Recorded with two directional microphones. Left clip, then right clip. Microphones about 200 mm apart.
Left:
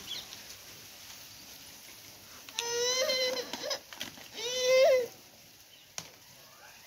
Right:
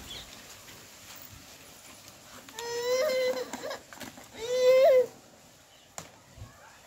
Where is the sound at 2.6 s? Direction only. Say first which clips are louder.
Right 2 dB; 15° right (ahead or behind).